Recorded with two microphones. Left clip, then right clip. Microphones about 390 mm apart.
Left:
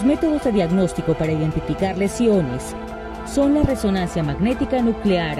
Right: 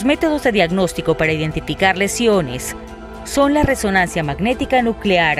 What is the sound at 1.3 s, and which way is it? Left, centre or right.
Speech, right.